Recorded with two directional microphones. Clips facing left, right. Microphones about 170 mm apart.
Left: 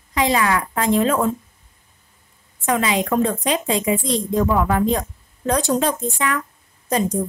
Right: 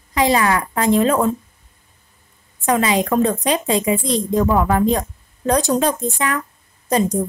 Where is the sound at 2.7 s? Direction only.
35° right (ahead or behind).